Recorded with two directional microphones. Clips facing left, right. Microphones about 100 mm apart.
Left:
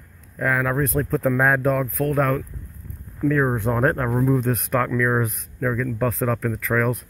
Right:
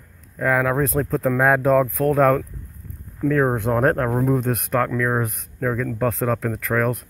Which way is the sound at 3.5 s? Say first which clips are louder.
Right 2 dB; 70° right (ahead or behind).